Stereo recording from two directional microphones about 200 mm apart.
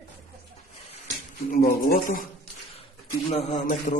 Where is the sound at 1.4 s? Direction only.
45° left (ahead or behind).